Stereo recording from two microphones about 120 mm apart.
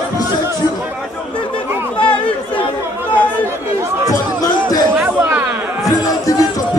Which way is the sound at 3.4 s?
25° right (ahead or behind).